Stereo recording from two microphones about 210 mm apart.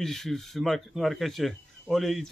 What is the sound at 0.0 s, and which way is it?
A man's voice, centre (ahead or behind).